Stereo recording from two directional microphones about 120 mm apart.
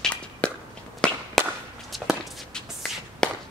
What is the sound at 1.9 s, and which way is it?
Walk, centre (ahead or behind).